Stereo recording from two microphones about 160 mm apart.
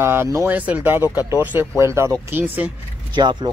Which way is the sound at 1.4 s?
10° right (ahead or behind).